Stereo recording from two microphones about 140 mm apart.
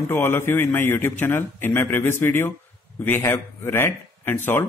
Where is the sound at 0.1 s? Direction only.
15° left (ahead or behind).